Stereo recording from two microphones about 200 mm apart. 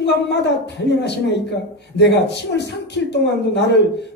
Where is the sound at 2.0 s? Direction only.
60° left (ahead or behind).